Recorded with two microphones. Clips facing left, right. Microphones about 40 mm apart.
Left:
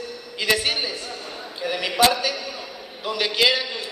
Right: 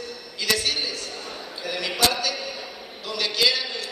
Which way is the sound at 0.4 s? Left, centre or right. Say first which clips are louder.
Left 3 dB; left.